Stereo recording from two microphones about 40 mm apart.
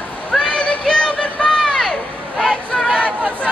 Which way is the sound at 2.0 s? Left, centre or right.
Left.